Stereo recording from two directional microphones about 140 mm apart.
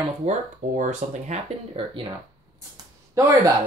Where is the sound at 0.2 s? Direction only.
55° right (ahead or behind).